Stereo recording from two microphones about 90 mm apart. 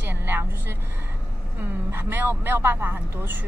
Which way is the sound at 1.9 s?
25° right (ahead or behind).